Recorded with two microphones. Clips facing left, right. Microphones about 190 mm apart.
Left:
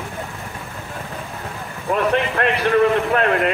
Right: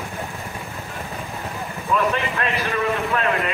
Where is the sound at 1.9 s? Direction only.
60° left (ahead or behind).